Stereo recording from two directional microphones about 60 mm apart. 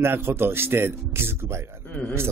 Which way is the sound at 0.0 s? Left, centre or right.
Right.